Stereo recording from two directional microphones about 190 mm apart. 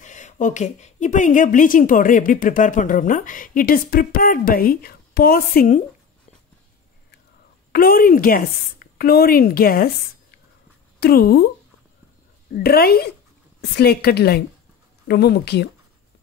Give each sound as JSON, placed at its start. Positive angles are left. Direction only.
{"t": 0.0, "sound": "a woman's voice", "side_deg": 40}
{"t": 7.7, "sound": "a woman's voice", "side_deg": 50}
{"t": 11.0, "sound": "a woman's voice", "side_deg": 55}
{"t": 12.5, "sound": "a woman's voice", "side_deg": 55}